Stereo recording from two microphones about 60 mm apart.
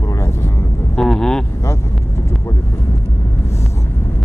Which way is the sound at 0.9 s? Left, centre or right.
Centre.